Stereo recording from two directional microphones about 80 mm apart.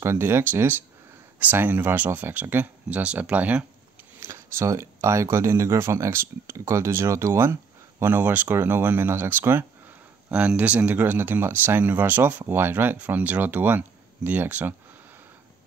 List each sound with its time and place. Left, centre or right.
0.0 s speech: right
4.2 s speech: right
10.3 s speech: centre